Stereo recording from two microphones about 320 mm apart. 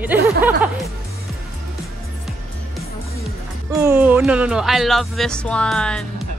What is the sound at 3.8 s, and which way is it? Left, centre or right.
Speech, centre.